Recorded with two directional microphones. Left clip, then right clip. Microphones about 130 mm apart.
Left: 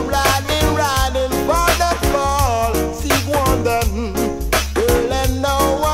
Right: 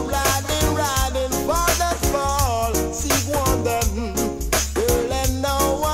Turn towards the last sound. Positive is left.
turn(degrees=-25)  # may be behind; listen again after turning